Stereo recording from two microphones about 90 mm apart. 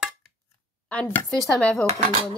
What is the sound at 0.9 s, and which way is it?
Speech, 10° left (ahead or behind).